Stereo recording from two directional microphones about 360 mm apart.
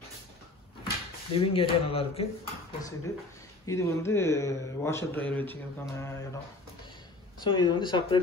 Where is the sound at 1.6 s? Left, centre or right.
Centre.